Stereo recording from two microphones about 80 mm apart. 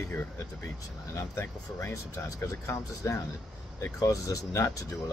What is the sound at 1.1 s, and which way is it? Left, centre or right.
Speech, left.